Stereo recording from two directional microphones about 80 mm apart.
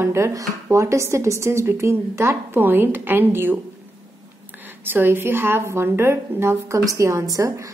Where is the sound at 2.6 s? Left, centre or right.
Right.